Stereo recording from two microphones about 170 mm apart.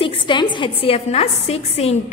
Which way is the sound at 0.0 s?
25° left (ahead or behind).